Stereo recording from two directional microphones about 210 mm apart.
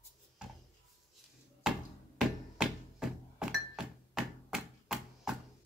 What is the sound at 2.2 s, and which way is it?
Music, centre (ahead or behind).